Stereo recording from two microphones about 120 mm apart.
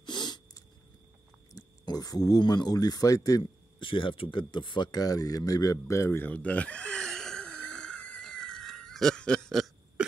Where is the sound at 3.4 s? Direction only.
45° left (ahead or behind).